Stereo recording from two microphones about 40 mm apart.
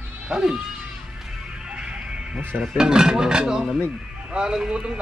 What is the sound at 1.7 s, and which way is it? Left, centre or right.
Music, right.